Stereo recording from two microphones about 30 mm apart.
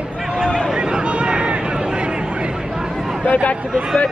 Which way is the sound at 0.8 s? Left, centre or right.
Right.